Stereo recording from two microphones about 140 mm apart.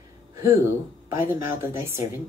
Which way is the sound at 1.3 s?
15° right (ahead or behind).